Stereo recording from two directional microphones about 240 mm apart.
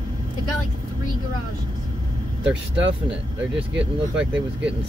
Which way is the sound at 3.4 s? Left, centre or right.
Centre.